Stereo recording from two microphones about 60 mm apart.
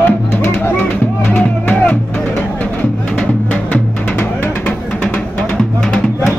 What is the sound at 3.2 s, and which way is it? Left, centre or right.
Music, left.